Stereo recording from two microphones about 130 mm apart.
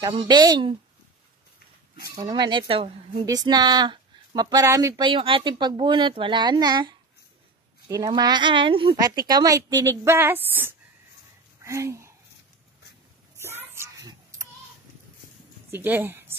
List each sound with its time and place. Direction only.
0.0 s speech: 35° right (ahead or behind)
2.3 s speech: 35° right (ahead or behind)
3.3 s speech: 30° right (ahead or behind)
5.0 s speech: 40° right (ahead or behind)
8.1 s speech: 35° right (ahead or behind)
8.9 s a woman's voice: 30° right (ahead or behind)
13.4 s a sound: 20° right (ahead or behind)
15.7 s speech: 15° right (ahead or behind)